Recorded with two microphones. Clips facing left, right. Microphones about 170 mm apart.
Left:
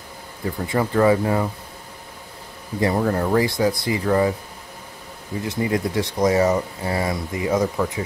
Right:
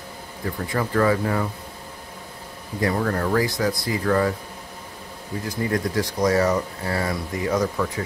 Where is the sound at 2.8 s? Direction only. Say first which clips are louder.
Left 3 dB; 20° left (ahead or behind).